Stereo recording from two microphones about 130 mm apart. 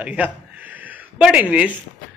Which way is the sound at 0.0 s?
10° right (ahead or behind).